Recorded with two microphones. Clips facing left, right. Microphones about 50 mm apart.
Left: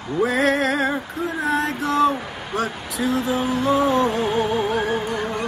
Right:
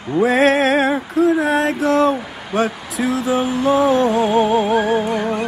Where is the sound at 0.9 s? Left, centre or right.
Right.